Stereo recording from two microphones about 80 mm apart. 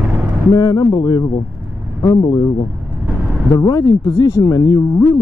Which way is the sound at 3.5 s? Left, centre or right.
Left.